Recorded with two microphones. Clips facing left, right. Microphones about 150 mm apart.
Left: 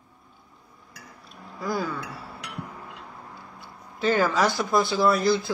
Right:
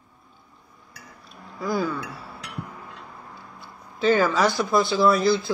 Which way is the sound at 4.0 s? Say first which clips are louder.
Right 2 dB; 45° left (ahead or behind).